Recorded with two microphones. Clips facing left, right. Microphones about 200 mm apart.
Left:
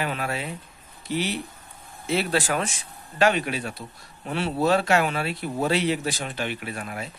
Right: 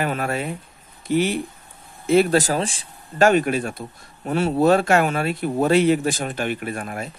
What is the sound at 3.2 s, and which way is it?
Speech, 45° right (ahead or behind).